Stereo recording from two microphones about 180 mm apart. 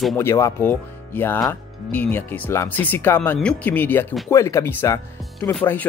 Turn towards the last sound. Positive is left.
turn(degrees=5)  # may be behind; listen again after turning